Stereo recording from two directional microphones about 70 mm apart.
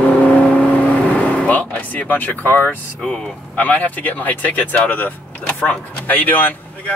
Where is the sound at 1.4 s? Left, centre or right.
Left.